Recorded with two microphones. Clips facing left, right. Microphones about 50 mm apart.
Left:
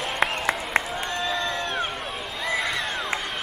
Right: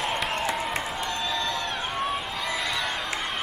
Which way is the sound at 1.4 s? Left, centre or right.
Left.